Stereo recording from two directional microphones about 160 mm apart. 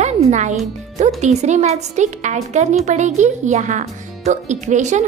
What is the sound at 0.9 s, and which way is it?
A child's voice, 45° right (ahead or behind).